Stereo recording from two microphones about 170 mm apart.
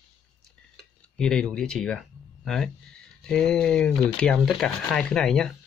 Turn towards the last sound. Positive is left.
turn(degrees=5)  # may be behind; listen again after turning